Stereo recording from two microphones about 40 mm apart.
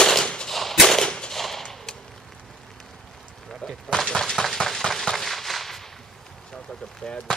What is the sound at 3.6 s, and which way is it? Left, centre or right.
Speech, centre.